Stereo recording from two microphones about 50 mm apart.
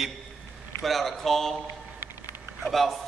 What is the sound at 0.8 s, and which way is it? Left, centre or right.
Speech, centre.